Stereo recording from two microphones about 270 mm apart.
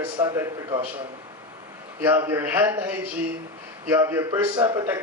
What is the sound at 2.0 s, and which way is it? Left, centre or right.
A man's voice, centre.